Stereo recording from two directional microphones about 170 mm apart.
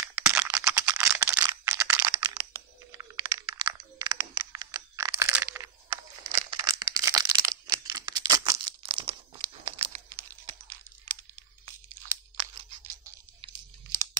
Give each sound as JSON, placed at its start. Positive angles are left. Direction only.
{"t": 0.1, "sound": "computer keyboard", "side_deg": -15}
{"t": 1.4, "sound": "a sound", "side_deg": -20}
{"t": 2.1, "sound": "computer keyboard", "side_deg": -25}